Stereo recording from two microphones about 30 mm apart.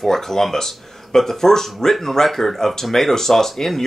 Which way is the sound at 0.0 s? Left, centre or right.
Centre.